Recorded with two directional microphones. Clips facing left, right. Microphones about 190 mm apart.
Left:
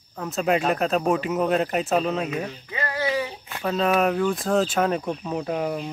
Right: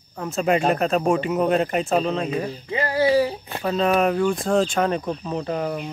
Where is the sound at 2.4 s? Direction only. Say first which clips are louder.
Right 5 dB; 30° right (ahead or behind).